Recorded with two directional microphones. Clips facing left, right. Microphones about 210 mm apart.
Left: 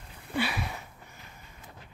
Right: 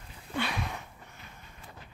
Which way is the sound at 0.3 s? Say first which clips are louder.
Left 2 dB; 5° left (ahead or behind).